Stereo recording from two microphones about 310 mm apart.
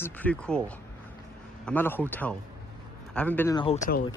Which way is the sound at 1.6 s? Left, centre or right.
Centre.